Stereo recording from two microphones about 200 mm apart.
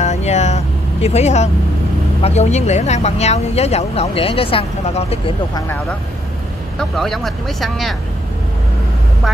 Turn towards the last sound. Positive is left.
turn(degrees=0)  # may be behind; listen again after turning